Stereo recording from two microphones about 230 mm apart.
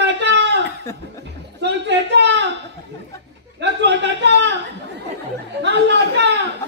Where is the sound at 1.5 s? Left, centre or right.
Right.